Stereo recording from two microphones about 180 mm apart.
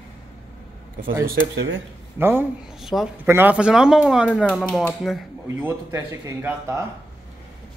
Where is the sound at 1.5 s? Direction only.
90° right.